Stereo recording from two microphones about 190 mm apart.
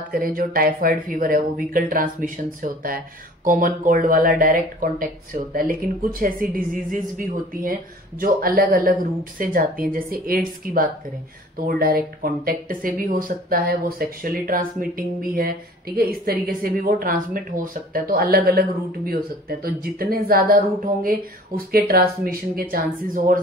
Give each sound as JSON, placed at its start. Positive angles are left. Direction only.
{"t": 0.1, "sound": "speech", "side_deg": -50}